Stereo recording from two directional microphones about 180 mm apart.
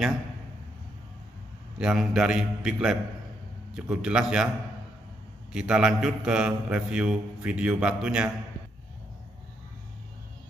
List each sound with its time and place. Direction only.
1.8 s a man's voice: 5° right (ahead or behind)
5.5 s a man's voice: 5° right (ahead or behind)